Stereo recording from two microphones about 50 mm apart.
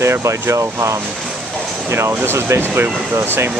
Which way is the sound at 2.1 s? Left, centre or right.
Right.